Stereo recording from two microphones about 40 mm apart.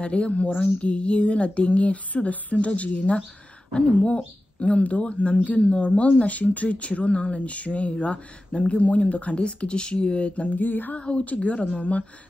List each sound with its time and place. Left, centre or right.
0.0 s speech: left
10.6 s a sound: left
11.0 s a woman's voice: left